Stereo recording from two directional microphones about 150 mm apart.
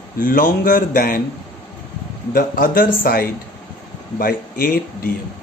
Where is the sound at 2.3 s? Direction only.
70° left (ahead or behind).